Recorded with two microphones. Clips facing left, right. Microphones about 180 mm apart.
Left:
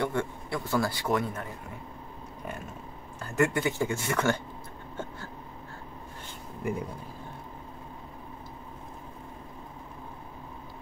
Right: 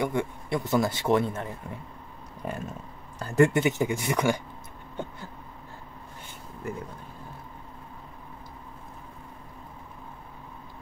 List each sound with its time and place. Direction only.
0.0 s a man's voice: 15° right (ahead or behind)
3.2 s a man's voice: 35° right (ahead or behind); by 4.4 s 15° right (ahead or behind)
5.0 s a sound: 15° right (ahead or behind)
6.6 s speech: 15° left (ahead or behind)